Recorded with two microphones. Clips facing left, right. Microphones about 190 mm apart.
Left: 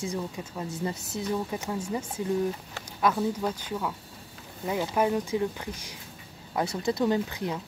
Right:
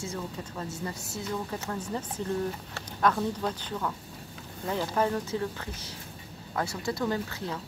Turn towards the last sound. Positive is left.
turn(degrees=15)  # may be behind; listen again after turning